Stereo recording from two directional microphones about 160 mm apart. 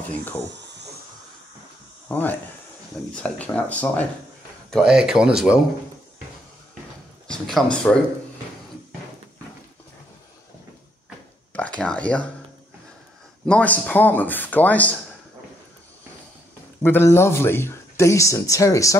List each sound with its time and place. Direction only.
0.1 s speech: 10° left (ahead or behind)
0.5 s a sound: 90° right
2.0 s speech: 10° left (ahead or behind)
4.6 s speech: centre (ahead or behind)
7.2 s speech: 5° left (ahead or behind)
11.5 s speech: 5° left (ahead or behind)
13.5 s speech: 10° left (ahead or behind)
16.8 s speech: 15° left (ahead or behind)